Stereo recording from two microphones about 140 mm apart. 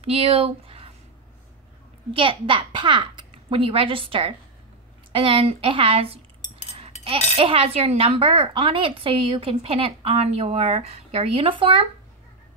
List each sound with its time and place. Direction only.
0.0 s speech: 45° right (ahead or behind)
2.1 s a child's voice: 40° right (ahead or behind)
6.5 s a sound: 45° right (ahead or behind)
7.3 s speech: 40° right (ahead or behind)